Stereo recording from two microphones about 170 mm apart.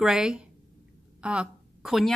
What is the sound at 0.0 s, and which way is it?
A woman's voice, 5° right (ahead or behind).